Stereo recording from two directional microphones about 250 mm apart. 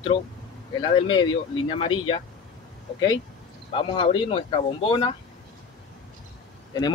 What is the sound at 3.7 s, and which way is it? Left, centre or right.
Speech, left.